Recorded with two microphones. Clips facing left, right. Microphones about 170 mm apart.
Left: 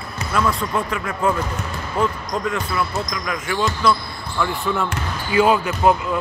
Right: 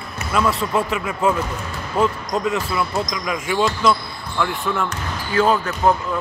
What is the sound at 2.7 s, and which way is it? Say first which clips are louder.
Speech: right 1 dB; 20° right (ahead or behind).